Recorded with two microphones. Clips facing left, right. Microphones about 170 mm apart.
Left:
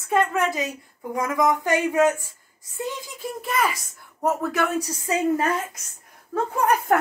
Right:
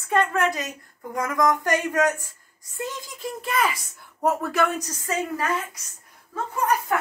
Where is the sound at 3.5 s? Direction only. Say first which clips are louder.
Even; centre (ahead or behind).